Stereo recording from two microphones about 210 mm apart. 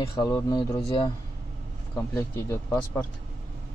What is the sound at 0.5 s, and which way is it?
A man's voice, 20° left (ahead or behind).